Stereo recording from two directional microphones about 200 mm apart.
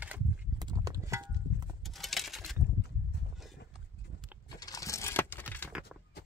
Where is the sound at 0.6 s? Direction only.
20° right (ahead or behind).